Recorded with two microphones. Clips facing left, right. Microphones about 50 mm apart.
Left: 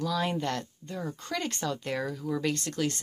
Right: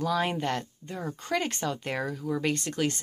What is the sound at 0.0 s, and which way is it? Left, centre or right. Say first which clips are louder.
Speech: right 2 dB; right.